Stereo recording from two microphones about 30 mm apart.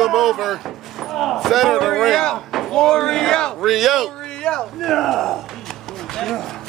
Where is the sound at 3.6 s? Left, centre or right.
Centre.